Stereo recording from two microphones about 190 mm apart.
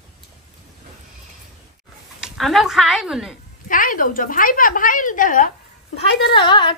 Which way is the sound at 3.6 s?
45° left (ahead or behind).